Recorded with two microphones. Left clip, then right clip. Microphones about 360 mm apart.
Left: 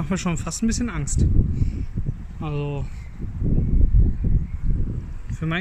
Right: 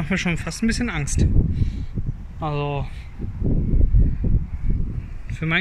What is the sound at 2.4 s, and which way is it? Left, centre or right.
Speech, centre.